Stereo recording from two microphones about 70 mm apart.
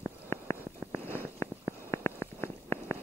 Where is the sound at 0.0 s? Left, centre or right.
Left.